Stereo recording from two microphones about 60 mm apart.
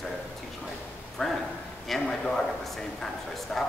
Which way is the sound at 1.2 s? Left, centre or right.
Centre.